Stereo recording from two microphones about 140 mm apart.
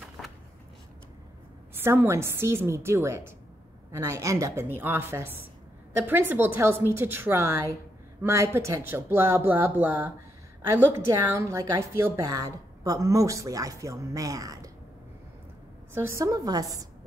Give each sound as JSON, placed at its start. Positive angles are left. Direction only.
{"t": 1.8, "sound": "a woman's voice", "side_deg": -15}
{"t": 15.9, "sound": "a woman's voice", "side_deg": -15}